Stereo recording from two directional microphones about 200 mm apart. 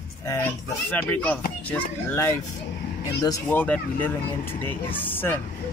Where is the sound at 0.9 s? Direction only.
5° left (ahead or behind).